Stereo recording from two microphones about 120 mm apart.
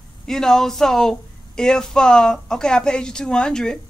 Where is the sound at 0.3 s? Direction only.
5° left (ahead or behind).